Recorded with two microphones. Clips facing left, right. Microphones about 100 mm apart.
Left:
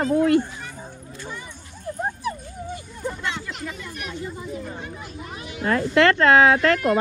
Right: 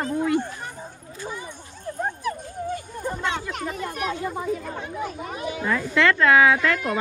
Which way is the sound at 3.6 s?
45° right (ahead or behind).